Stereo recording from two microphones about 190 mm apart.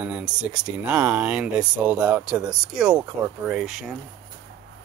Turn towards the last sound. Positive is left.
turn(degrees=0)  # may be behind; listen again after turning